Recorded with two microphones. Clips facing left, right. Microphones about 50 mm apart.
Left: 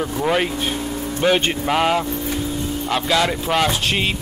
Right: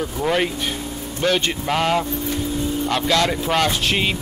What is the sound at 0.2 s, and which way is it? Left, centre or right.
Speech, centre.